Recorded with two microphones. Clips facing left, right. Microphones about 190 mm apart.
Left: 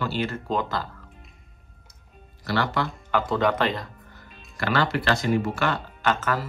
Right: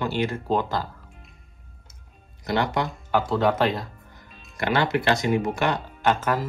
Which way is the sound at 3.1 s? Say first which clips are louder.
Right 1 dB; centre (ahead or behind).